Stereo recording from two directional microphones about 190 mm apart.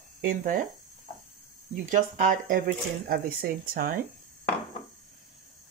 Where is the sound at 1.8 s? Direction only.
45° right (ahead or behind).